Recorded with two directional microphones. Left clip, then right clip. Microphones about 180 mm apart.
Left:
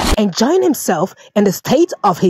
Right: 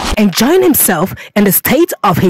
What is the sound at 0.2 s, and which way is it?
Speech, 45° right (ahead or behind).